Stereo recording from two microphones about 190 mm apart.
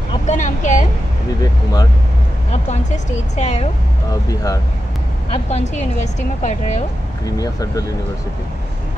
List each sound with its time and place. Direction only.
0.3 s speech: 40° left (ahead or behind)
1.4 s speech: 20° left (ahead or behind)
3.3 s speech: 35° left (ahead or behind)
4.1 s speech: 20° left (ahead or behind)
5.3 s speech: 35° left (ahead or behind)
7.2 s speech: 20° left (ahead or behind)